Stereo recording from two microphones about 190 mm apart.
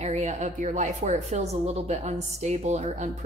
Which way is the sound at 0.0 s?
35° right (ahead or behind).